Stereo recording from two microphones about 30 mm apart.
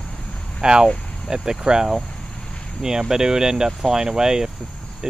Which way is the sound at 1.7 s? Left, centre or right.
Right.